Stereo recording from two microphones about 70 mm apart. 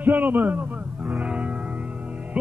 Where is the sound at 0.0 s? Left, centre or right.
Right.